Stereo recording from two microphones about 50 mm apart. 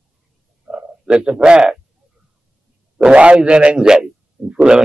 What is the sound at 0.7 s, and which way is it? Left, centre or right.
Bow-wow, centre.